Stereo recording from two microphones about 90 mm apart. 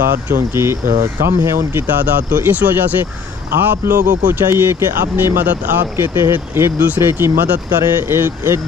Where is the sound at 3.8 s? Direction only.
30° right (ahead or behind).